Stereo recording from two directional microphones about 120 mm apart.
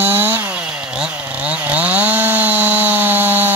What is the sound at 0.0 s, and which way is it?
Chainsaw, 20° right (ahead or behind).